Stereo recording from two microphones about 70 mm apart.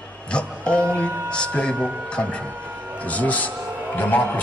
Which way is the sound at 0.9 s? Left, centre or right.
Centre.